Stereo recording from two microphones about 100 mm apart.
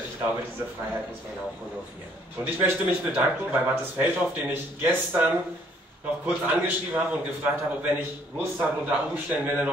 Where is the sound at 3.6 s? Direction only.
20° right (ahead or behind).